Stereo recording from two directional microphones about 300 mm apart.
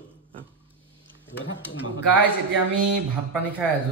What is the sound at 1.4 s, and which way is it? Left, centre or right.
Speech, left.